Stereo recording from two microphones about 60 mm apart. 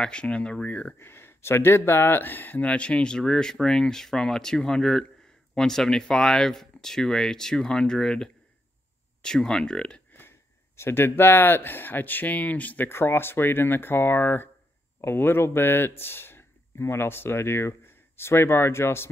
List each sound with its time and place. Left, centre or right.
0.0 s speech: centre
0.9 s speech: left; by 10.0 s centre
10.8 s speech: left
12.8 s speech: left